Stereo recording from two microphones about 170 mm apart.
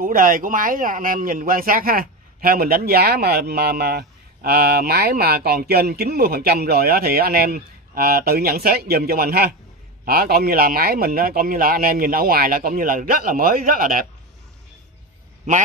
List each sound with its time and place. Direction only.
0.0 s speech: 55° right (ahead or behind)